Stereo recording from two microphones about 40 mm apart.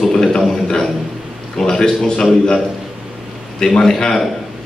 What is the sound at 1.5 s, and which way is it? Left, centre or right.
Speech, centre.